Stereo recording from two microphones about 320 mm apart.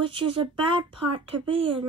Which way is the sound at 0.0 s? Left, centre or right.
Centre.